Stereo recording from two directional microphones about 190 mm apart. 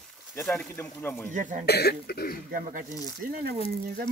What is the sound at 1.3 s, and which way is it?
Speech, 40° right (ahead or behind).